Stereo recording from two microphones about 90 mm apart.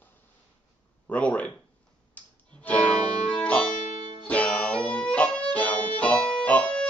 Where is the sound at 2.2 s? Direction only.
20° left (ahead or behind).